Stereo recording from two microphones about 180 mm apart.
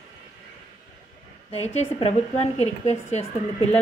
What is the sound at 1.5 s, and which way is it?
A woman's voice, 35° left (ahead or behind).